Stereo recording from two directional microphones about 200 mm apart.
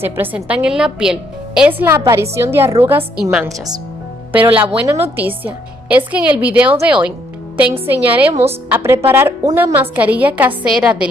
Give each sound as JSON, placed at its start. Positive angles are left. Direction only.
{"t": 0.0, "sound": "a woman's voice", "side_deg": -10}
{"t": 3.4, "sound": "speech", "side_deg": -20}
{"t": 5.1, "sound": "a woman's voice", "side_deg": -10}